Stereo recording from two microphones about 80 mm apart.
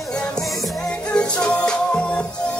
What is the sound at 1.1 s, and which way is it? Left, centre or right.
Music, centre.